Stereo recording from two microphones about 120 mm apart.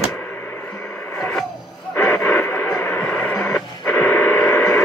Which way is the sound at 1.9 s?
15° left (ahead or behind).